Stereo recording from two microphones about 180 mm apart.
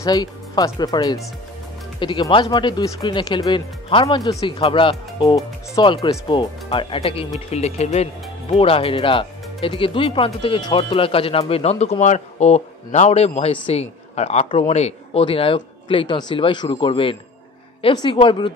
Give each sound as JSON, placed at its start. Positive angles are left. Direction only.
{"t": 0.0, "sound": "speech", "side_deg": 20}